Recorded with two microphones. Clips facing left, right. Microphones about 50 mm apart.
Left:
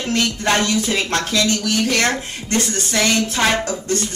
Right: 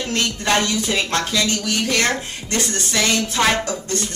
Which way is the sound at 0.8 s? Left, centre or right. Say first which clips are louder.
Left 1 dB; centre.